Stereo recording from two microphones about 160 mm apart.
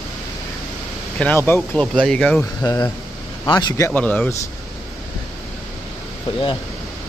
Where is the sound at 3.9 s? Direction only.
10° left (ahead or behind).